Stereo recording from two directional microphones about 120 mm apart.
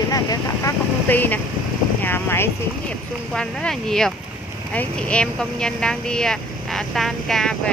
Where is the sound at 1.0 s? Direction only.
15° left (ahead or behind).